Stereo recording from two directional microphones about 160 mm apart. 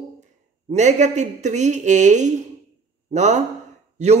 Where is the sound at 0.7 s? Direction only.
45° right (ahead or behind).